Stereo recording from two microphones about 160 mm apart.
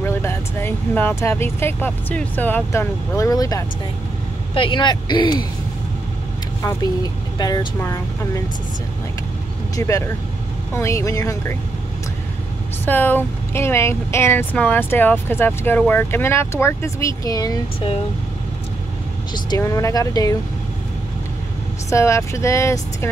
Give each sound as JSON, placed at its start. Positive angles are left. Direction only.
{"t": 0.0, "sound": "speech", "side_deg": 15}
{"t": 6.6, "sound": "speech", "side_deg": 25}
{"t": 9.8, "sound": "speech", "side_deg": 20}
{"t": 12.8, "sound": "speech", "side_deg": 10}
{"t": 19.3, "sound": "speech", "side_deg": 25}
{"t": 21.9, "sound": "speech", "side_deg": 20}